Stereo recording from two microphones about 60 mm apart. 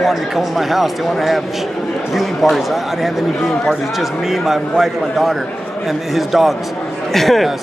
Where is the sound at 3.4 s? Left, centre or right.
Centre.